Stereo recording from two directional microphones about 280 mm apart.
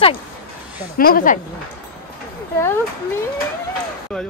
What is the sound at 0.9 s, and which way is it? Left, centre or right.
Speech, left.